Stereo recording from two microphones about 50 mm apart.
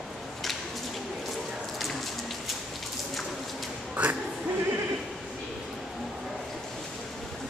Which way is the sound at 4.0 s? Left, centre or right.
Right.